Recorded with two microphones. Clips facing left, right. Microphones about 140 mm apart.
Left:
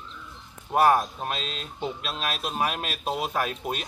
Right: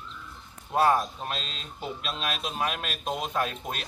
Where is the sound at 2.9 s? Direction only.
5° left (ahead or behind).